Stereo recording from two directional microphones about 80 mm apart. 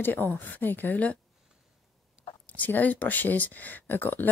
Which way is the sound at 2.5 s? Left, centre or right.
Left.